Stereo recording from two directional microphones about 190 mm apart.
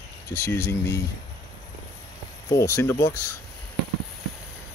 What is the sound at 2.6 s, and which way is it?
Speech, 15° left (ahead or behind).